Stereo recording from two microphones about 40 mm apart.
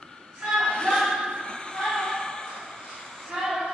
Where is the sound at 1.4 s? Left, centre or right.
Left.